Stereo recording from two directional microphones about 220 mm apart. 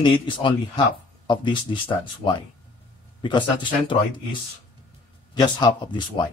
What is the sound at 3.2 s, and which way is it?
Speech, 20° left (ahead or behind).